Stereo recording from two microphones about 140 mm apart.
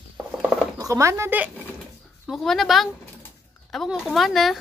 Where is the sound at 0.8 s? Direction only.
20° right (ahead or behind).